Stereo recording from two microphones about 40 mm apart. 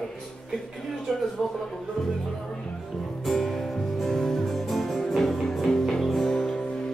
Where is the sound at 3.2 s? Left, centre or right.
Centre.